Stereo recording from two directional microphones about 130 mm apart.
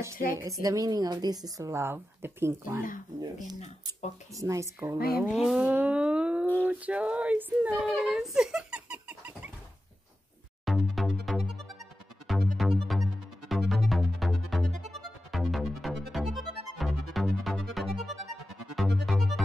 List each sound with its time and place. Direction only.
0.4 s a woman's voice: 25° right (ahead or behind)
4.4 s a woman's voice: 25° right (ahead or behind)
5.3 s speech: centre (ahead or behind)
5.7 s music: 10° right (ahead or behind)
6.5 s female singing: 15° right (ahead or behind)
7.9 s music: centre (ahead or behind)
10.6 s music: centre (ahead or behind)